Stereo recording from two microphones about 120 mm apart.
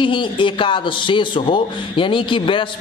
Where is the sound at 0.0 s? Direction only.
45° left (ahead or behind).